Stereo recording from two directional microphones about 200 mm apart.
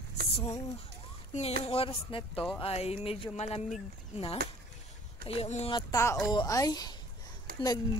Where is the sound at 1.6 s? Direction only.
30° left (ahead or behind).